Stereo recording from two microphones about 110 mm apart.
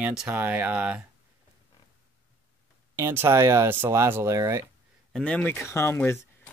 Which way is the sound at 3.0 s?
25° right (ahead or behind).